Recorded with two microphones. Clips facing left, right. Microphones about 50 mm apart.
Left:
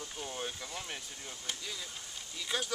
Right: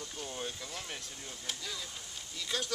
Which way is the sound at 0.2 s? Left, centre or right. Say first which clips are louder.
Left 1 dB; centre.